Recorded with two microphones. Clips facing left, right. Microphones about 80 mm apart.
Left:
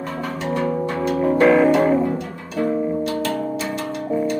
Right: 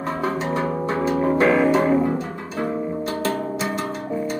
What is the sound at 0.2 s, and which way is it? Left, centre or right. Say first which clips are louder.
Music: right 4 dB; right.